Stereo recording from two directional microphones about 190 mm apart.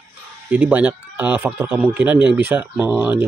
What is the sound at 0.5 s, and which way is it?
Speech, 10° right (ahead or behind).